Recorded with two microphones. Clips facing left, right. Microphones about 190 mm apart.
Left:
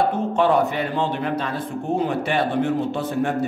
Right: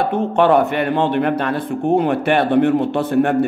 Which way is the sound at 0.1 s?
65° right (ahead or behind).